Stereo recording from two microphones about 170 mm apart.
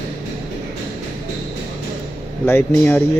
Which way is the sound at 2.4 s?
10° left (ahead or behind).